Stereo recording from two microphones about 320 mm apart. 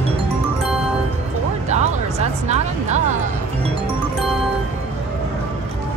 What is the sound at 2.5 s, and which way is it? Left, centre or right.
Music, right.